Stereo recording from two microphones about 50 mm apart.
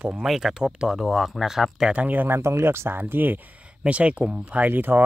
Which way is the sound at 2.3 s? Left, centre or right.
Right.